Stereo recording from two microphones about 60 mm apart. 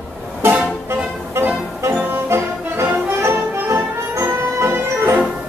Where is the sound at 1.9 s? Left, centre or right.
Right.